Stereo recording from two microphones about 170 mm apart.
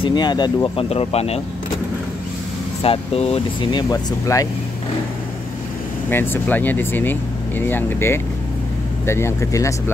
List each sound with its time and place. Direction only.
0.0 s speech: 25° left (ahead or behind)
0.8 s speech: 35° left (ahead or behind)
2.8 s speech: 35° left (ahead or behind)
3.7 s speech: 20° left (ahead or behind)
6.0 s speech: 10° left (ahead or behind)